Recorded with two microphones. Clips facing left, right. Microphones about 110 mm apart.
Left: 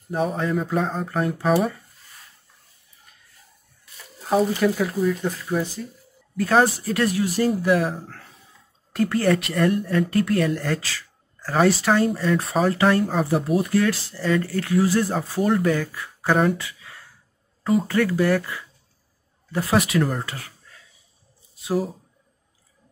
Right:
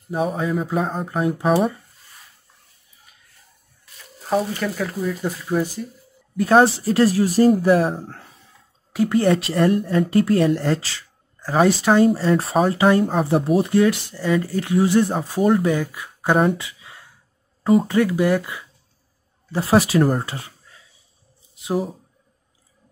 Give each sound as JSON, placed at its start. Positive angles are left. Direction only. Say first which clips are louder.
{"t": 0.1, "sound": "speech", "louder": "right 1 dB", "side_deg": -5}
{"t": 1.5, "sound": "speech", "louder": "right 2 dB", "side_deg": -25}
{"t": 4.2, "sound": "speech", "louder": "left 2 dB", "side_deg": 0}
{"t": 6.3, "sound": "speech", "louder": "right 4 dB", "side_deg": -25}
{"t": 12.2, "sound": "speech", "louder": "right 3 dB", "side_deg": -30}
{"t": 12.6, "sound": "speech", "louder": "right 1 dB", "side_deg": -15}
{"t": 13.0, "sound": "speech", "louder": "right 2 dB", "side_deg": 0}
{"t": 13.6, "sound": "speech", "louder": "right 4 dB", "side_deg": -20}
{"t": 16.4, "sound": "a sound", "louder": "right 2 dB", "side_deg": -20}
{"t": 17.8, "sound": "speech", "louder": "right 2 dB", "side_deg": -15}
{"t": 19.5, "sound": "speech", "louder": "right 4 dB", "side_deg": -30}
{"t": 20.2, "sound": "a sound", "louder": "right 3 dB", "side_deg": -25}